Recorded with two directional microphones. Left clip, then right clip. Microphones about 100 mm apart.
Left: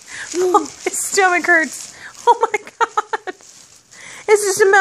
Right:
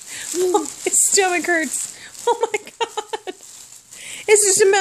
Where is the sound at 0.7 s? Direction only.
45° right (ahead or behind).